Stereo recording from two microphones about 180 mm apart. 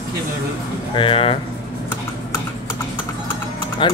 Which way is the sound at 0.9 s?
30° left (ahead or behind).